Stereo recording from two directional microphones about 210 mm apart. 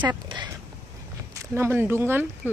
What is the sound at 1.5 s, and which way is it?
Speech, 10° right (ahead or behind).